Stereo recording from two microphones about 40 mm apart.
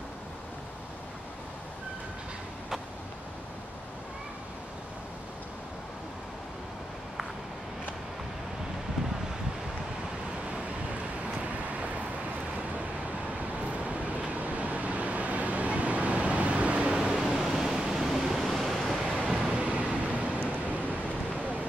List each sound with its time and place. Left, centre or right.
14.3 s vehicle: right
17.0 s waves: centre
19.3 s vehicle: right